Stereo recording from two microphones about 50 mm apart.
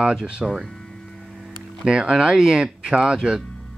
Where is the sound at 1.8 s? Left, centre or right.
Centre.